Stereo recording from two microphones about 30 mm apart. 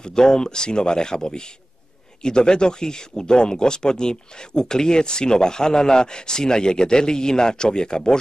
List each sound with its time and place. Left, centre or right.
0.0 s speech: left